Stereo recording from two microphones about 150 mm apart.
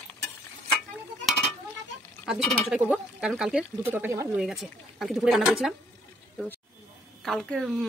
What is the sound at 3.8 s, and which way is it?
Speech, 15° right (ahead or behind).